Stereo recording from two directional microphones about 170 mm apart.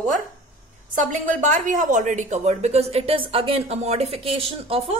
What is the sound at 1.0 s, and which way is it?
A woman's voice, 45° right (ahead or behind).